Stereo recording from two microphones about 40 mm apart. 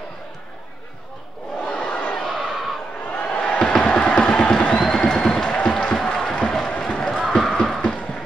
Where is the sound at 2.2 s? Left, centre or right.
Centre.